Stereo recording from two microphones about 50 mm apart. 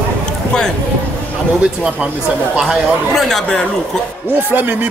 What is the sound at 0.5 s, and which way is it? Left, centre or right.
Speech, centre.